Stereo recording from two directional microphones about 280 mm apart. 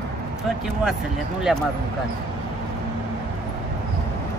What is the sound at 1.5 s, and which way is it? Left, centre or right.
Speech, centre.